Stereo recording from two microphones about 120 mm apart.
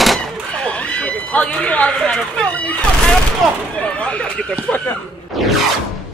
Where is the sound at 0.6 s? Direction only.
10° left (ahead or behind).